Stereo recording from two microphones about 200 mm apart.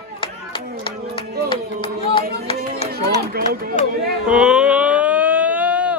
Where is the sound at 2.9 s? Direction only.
50° right (ahead or behind).